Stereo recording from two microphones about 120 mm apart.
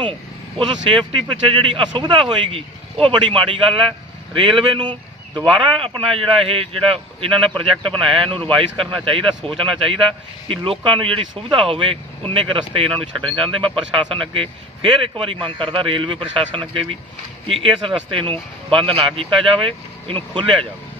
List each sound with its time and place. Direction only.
0.6 s a man's voice: 45° right (ahead or behind)